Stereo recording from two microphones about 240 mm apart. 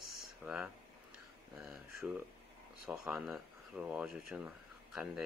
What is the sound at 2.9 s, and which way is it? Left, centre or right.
Speech, centre.